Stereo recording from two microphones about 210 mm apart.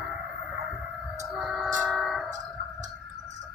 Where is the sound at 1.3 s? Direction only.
Centre (ahead or behind).